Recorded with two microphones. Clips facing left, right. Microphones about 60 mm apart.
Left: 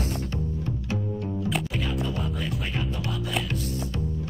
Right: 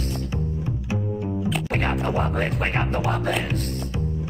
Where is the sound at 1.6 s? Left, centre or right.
Right.